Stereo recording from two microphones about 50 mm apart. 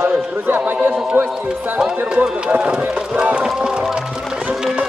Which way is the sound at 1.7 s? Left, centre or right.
Centre.